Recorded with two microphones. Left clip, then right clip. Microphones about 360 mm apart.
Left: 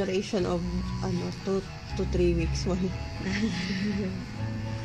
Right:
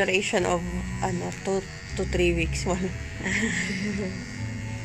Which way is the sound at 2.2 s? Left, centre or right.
Right.